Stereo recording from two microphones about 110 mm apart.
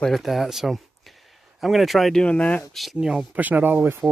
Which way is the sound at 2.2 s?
10° left (ahead or behind).